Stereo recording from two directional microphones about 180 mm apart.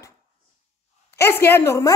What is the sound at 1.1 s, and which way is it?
Speech, 15° left (ahead or behind).